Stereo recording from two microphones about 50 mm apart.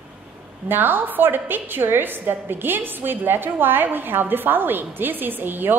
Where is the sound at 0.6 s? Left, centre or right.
Right.